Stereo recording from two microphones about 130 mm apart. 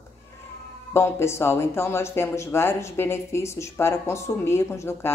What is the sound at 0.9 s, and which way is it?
Speech, 20° left (ahead or behind).